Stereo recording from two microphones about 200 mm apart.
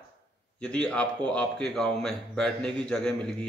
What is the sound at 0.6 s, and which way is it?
A man's voice, 5° left (ahead or behind).